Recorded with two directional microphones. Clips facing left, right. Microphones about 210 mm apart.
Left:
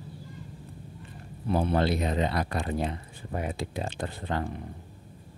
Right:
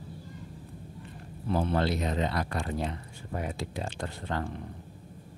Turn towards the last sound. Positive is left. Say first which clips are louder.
# left 2 dB
turn(degrees=15)  # may be behind; listen again after turning